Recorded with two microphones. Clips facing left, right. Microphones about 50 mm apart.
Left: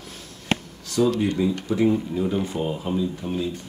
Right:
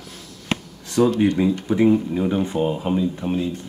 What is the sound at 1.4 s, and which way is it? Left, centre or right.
Speech, right.